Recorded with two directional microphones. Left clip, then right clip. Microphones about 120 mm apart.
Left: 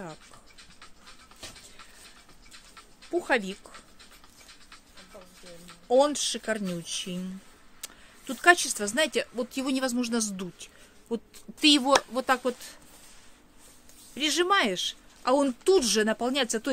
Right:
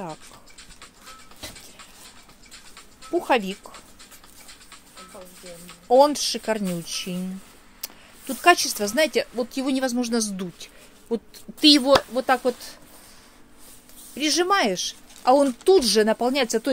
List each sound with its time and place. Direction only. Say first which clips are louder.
3.2 s speech: right 5 dB; 25° left (ahead or behind)
5.9 s speech: right 6 dB; 25° left (ahead or behind)
12.4 s speech: right 6 dB; 25° left (ahead or behind)
14.1 s speech: right 3 dB; 25° left (ahead or behind)